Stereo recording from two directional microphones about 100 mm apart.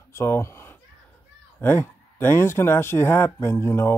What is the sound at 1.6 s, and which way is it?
Speech, 25° left (ahead or behind).